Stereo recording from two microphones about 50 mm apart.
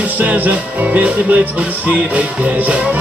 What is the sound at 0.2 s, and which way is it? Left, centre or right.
Music, right.